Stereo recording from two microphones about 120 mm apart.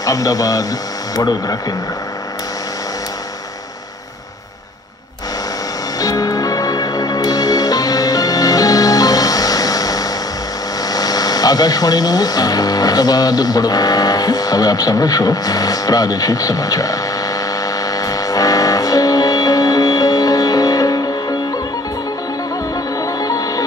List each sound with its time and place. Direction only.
0.0 s speech: 30° left (ahead or behind)
5.9 s music: 30° left (ahead or behind)
10.9 s speech: 30° left (ahead or behind)
17.9 s music: 30° left (ahead or behind)
23.2 s music: 30° left (ahead or behind)